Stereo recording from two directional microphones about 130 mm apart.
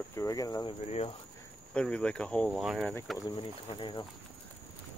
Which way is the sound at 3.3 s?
40° left (ahead or behind).